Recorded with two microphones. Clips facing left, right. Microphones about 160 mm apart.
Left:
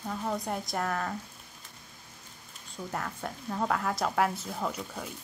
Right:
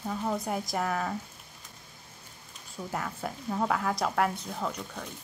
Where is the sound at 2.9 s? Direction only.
5° right (ahead or behind).